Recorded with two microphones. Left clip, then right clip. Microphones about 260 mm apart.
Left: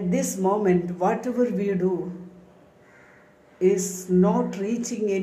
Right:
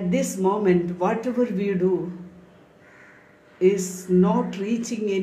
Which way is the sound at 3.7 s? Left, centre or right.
Centre.